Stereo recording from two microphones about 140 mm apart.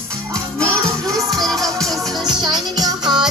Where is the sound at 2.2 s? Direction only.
30° right (ahead or behind).